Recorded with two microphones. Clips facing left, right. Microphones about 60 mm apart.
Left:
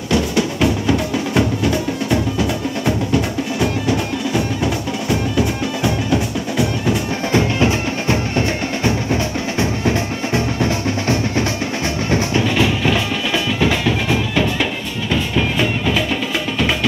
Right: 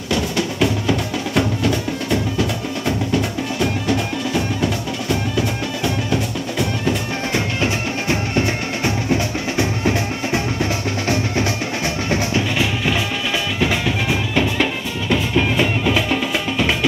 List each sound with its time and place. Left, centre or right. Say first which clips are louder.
0.6 s music: even; centre
14.3 s music: even; right